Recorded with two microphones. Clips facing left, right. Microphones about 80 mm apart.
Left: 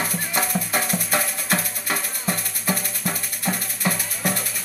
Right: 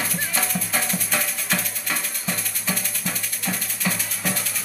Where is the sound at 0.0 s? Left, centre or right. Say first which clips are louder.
Left 2 dB; centre.